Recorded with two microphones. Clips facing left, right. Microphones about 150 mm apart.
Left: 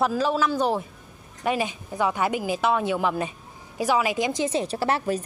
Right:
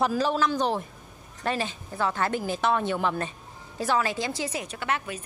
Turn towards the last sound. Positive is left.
turn(degrees=35)  # may be behind; listen again after turning